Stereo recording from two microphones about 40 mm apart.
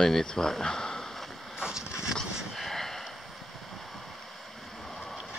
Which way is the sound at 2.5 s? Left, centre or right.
Centre.